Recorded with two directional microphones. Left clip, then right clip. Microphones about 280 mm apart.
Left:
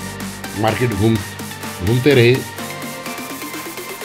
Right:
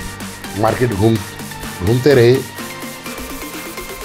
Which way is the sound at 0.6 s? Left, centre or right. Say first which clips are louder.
Right 3 dB; centre.